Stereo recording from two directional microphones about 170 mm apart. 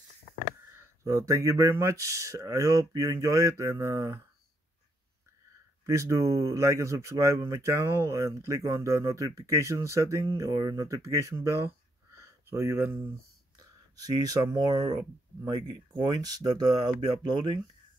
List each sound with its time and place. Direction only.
0.7 s speech: 20° right (ahead or behind)
5.9 s speech: 20° right (ahead or behind)